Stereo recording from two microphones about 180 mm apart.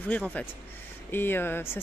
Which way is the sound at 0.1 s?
10° left (ahead or behind).